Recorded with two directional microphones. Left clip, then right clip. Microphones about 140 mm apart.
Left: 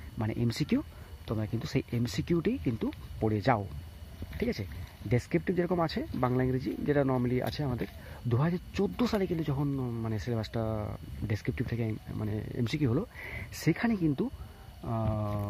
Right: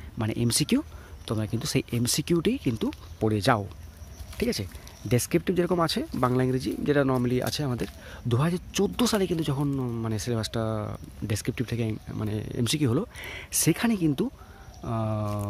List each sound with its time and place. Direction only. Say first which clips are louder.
0.2 s speech: right 5 dB; 35° right (ahead or behind)
0.5 s speech: right 8 dB; 50° right (ahead or behind)
0.7 s speech: right 5 dB; 35° right (ahead or behind)
4.4 s speech: right 5 dB; 50° right (ahead or behind)
5.1 s speech: right 5 dB; 40° right (ahead or behind)
7.6 s speech: right 4 dB; 20° right (ahead or behind)
8.5 s speech: right 5 dB; 45° right (ahead or behind); by 15.4 s 30° right (ahead or behind)